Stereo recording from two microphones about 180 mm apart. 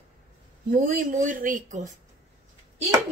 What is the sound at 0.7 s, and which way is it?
Speech, 50° right (ahead or behind).